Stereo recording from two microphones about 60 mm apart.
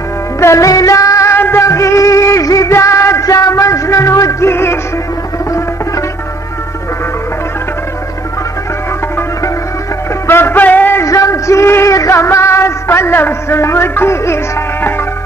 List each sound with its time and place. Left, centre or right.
0.4 s music: left
0.7 s music: left
1.3 s music: left
2.7 s music: left
3.3 s music: left
4.5 s music: left
10.2 s music: left
11.1 s music: left